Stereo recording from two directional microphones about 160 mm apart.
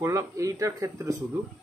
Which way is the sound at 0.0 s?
20° right (ahead or behind).